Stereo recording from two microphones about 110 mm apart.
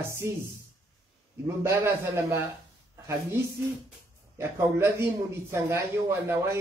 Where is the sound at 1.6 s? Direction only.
25° right (ahead or behind).